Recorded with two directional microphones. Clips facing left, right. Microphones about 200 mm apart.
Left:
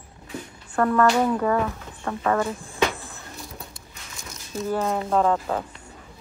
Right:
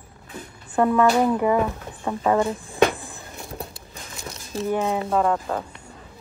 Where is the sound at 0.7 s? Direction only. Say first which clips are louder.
Right 1 dB; 15° right (ahead or behind).